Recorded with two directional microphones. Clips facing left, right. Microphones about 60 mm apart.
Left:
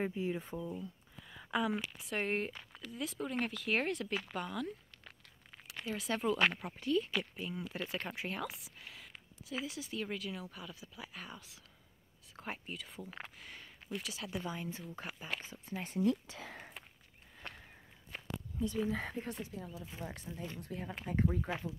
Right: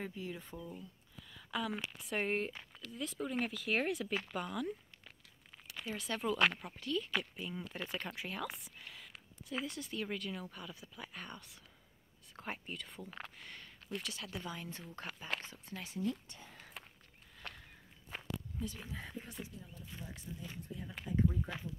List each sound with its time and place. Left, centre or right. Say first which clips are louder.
0.0 s speech: left 7 dB; left
1.2 s a sound: left 4 dB; left
1.8 s speech: even; centre
7.2 s speech: left 1 dB; centre
16.1 s speech: left 6 dB; left
16.8 s walk: right 1 dB; centre
17.4 s a sound: left 1 dB; left
18.9 s speech: left 9 dB; left
20.0 s speech: left 5 dB; left
20.6 s speech: left 4 dB; left
21.1 s speech: even; left